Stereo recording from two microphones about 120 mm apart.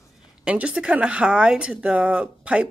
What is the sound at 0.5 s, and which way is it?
Speech, 10° right (ahead or behind).